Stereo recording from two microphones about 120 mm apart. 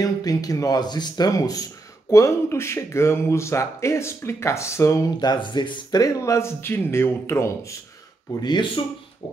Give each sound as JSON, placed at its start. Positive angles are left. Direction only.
{"t": 0.0, "sound": "speech", "side_deg": 30}
{"t": 8.4, "sound": "speech", "side_deg": 40}